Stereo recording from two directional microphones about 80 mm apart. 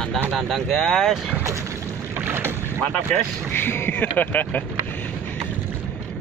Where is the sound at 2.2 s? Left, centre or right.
Right.